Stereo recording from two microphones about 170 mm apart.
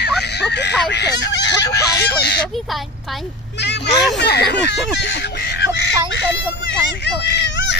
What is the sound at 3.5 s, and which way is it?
Speech, 90° left.